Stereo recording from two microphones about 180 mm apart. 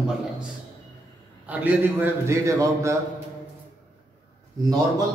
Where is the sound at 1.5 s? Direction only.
10° right (ahead or behind).